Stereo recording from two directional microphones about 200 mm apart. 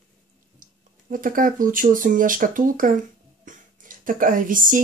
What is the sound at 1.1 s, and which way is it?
Speech, 40° right (ahead or behind).